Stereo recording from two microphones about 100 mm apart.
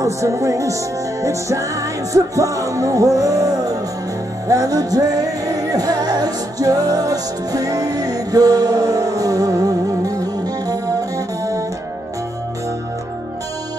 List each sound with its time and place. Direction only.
0.0 s music: 30° right (ahead or behind)